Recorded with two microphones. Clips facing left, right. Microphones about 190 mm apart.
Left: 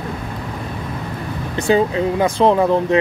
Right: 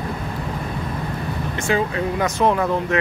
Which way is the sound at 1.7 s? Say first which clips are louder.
Left 6 dB; 25° left (ahead or behind).